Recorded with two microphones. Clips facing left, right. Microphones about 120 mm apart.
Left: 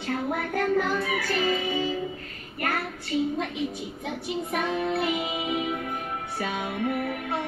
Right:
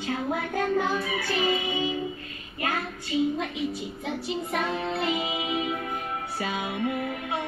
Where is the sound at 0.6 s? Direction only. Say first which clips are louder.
Left 1 dB; 20° right (ahead or behind).